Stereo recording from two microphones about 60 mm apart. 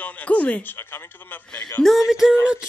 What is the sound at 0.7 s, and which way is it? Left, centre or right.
Speech, left.